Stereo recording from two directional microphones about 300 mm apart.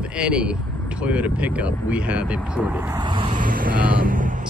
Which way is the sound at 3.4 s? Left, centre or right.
Right.